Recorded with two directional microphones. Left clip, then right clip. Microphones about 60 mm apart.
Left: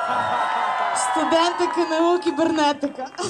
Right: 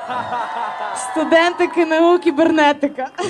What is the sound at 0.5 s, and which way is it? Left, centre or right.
Music, left.